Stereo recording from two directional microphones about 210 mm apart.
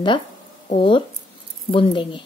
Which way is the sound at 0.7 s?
25° left (ahead or behind).